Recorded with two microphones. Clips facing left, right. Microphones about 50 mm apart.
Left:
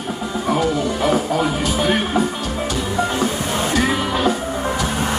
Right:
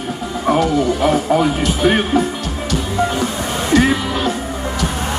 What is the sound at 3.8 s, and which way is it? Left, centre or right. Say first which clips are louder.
Music: right 1 dB; centre.